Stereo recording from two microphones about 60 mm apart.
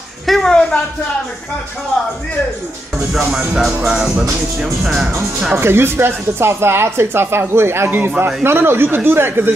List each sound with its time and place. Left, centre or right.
0.3 s speech: centre
3.1 s music: centre
4.8 s speech: centre
5.6 s speech: right